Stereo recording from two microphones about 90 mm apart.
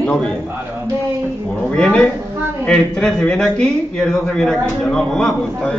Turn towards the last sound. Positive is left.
turn(degrees=10)  # may be behind; listen again after turning